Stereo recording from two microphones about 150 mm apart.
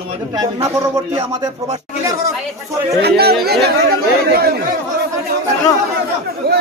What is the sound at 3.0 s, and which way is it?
Speech, 90° right.